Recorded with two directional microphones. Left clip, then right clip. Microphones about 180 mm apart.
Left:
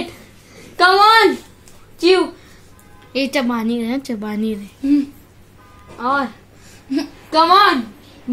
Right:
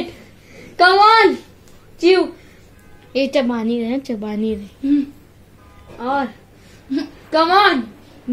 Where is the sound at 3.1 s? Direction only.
20° left (ahead or behind).